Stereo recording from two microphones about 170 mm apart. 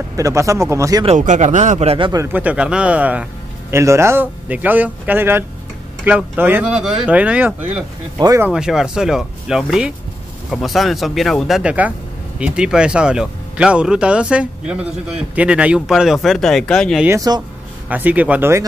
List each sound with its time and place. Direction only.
0.1 s speech: 20° right (ahead or behind)
1.0 s speech: 45° right (ahead or behind); by 2.2 s 30° right (ahead or behind)
2.2 s speech: 10° right (ahead or behind)
8.2 s speech: 20° right (ahead or behind)
8.5 s speech: 5° right (ahead or behind)
17.0 s speech: 20° right (ahead or behind)